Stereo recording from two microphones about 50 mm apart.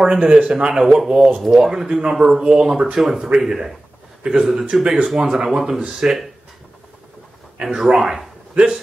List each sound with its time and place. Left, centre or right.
0.0 s speech: centre
2.4 s speech: right
2.7 s speech: centre
7.6 s speech: centre